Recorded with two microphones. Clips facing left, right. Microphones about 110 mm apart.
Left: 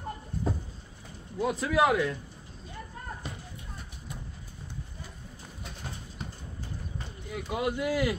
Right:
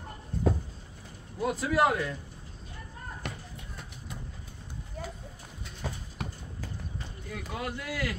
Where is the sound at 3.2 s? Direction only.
65° right (ahead or behind).